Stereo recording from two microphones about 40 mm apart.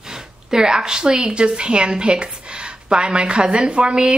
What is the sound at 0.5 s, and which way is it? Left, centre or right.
A woman's voice, centre.